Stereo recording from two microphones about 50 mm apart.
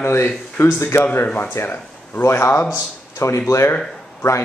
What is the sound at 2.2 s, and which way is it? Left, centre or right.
Speech, left.